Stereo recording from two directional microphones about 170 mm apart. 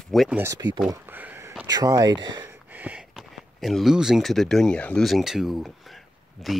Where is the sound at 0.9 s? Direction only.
10° right (ahead or behind).